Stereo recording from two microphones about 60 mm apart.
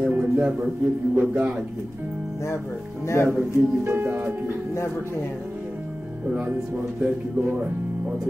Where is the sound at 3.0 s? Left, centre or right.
Left.